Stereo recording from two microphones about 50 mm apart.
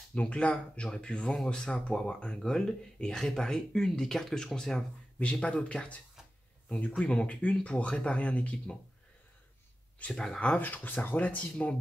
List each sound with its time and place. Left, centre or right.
0.1 s speech: left
4.2 s speech: centre; by 8.5 s left
10.1 s speech: centre
10.4 s speech: left